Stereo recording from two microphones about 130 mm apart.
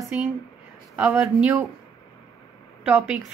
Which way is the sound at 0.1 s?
10° right (ahead or behind).